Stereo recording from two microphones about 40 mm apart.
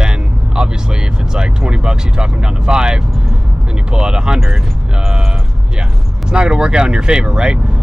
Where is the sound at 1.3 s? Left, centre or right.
Centre.